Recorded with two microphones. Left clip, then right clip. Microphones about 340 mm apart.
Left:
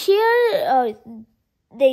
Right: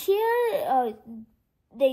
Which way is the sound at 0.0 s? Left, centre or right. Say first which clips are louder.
Left 7 dB; left.